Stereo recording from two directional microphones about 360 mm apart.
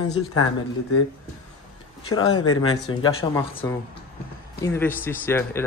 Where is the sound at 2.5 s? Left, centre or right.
Left.